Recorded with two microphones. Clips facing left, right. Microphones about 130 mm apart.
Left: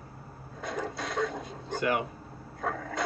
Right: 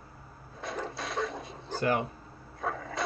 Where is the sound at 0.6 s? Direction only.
Centre (ahead or behind).